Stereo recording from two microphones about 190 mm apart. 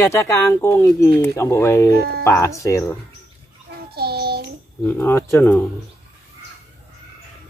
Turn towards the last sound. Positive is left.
turn(degrees=15)  # may be behind; listen again after turning